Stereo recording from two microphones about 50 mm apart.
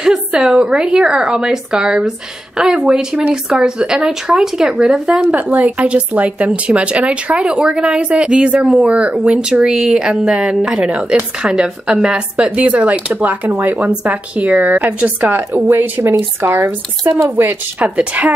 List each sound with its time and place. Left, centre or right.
0.0 s a woman's voice: centre
5.3 s speech: right
11.4 s speech: centre
15.0 s speech: right
17.7 s speech: right